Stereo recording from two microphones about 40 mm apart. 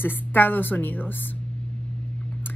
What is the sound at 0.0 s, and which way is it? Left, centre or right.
Speech, left.